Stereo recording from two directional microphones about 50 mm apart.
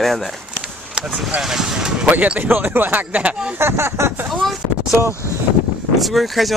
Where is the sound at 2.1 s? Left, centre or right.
Right.